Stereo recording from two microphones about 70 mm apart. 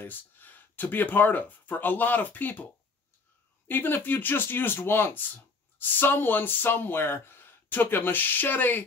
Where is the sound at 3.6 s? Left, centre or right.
Left.